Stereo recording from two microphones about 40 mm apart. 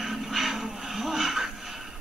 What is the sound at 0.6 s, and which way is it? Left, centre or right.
Music, centre.